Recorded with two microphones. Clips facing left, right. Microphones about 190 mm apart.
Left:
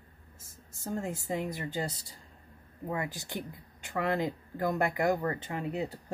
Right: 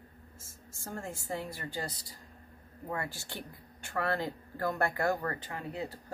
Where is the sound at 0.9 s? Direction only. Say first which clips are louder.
Left 5 dB; 20° left (ahead or behind).